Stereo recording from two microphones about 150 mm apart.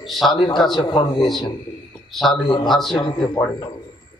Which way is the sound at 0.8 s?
30° left (ahead or behind).